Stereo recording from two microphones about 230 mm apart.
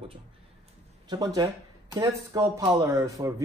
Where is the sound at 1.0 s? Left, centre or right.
Centre.